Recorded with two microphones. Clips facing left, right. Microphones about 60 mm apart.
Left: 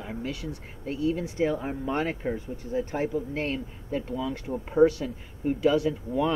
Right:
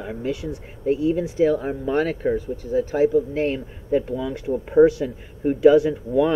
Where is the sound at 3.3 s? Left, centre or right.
Centre.